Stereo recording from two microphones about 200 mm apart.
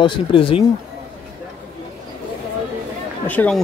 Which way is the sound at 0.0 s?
25° left (ahead or behind).